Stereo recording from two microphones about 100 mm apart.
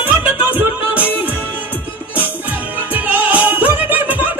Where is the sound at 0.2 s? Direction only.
15° right (ahead or behind).